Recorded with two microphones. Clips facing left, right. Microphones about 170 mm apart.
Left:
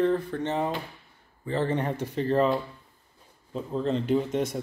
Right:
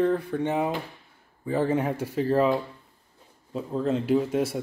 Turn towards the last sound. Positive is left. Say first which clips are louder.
# right 2 dB
turn(degrees=-5)  # may be behind; listen again after turning